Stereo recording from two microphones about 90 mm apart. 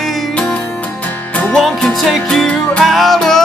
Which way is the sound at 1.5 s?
Centre (ahead or behind).